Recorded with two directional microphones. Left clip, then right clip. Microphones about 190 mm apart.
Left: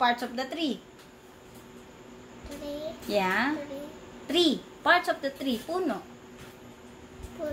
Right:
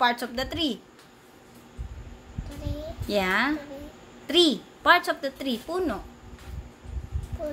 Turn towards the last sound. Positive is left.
turn(degrees=-35)  # may be behind; listen again after turning